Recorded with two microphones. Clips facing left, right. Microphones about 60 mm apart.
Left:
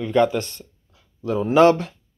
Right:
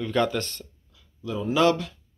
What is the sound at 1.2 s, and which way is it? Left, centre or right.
Speech, left.